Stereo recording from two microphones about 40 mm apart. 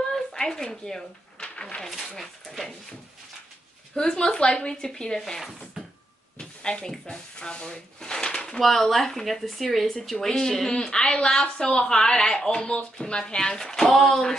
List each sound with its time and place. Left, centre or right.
0.1 s a sound: centre
1.8 s speech: centre
3.9 s a woman's voice: centre
5.2 s speech: centre
6.3 s speech: centre
8.5 s a woman's voice: centre